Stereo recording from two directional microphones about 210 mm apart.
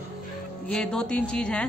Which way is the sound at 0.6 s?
5° left (ahead or behind).